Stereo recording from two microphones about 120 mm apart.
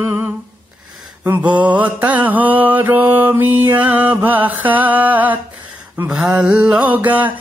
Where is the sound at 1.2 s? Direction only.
10° right (ahead or behind).